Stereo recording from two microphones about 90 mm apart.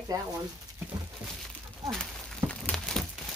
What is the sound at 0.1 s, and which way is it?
Speech, 40° right (ahead or behind).